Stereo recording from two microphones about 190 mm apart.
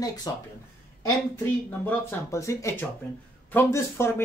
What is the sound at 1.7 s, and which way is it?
Speech, 10° left (ahead or behind).